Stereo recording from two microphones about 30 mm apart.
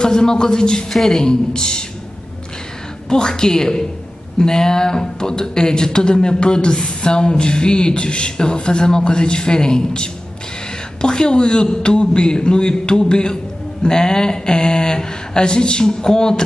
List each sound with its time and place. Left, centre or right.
0.0 s speech: left
0.9 s a woman's voice: centre
1.2 s speech: left
3.1 s speech: left